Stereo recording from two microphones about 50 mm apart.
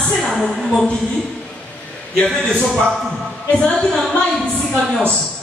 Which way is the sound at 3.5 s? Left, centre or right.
Left.